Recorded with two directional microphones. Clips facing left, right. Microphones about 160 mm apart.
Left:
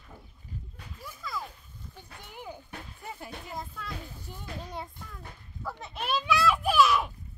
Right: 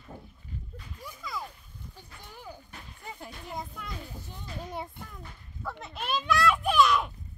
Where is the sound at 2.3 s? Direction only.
15° left (ahead or behind).